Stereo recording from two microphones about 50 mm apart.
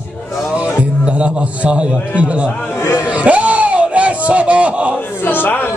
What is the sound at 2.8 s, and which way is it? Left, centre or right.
Speech, left.